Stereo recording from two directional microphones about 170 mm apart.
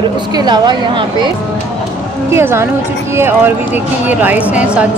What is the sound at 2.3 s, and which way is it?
Speech, 15° right (ahead or behind).